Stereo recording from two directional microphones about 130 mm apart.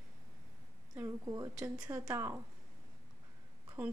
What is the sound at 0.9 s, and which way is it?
A woman's voice, 25° right (ahead or behind).